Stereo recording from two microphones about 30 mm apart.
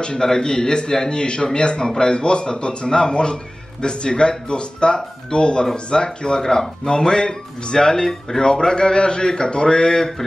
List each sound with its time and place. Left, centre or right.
0.0 s speech: left
1.1 s speech: left
6.4 s speech: centre
6.9 s speech: left